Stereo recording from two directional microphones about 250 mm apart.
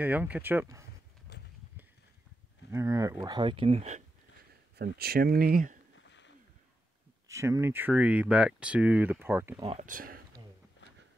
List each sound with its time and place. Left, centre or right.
0.0 s speech: centre
1.3 s a sound: left
2.7 s speech: centre
4.7 s speech: right
5.9 s a sound: left
7.2 s speech: centre
9.6 s speech: right